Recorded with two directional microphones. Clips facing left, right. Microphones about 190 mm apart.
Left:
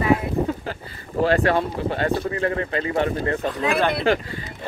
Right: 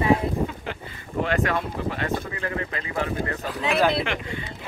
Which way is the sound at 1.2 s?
35° left (ahead or behind).